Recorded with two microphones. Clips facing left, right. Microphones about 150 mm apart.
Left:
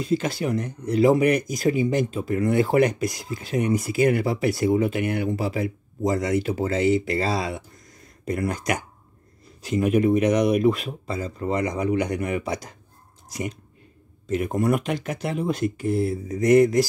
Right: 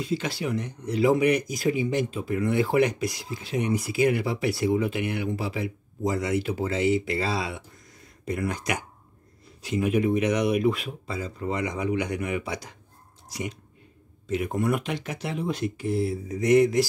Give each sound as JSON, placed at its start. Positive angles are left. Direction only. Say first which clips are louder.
{"t": 0.0, "sound": "speech", "louder": "left 4 dB", "side_deg": 45}